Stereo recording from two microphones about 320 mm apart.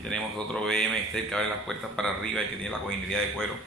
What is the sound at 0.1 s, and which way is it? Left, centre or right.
A man's voice, centre.